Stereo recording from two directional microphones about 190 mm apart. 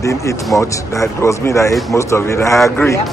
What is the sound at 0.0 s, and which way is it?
Speech, 15° left (ahead or behind).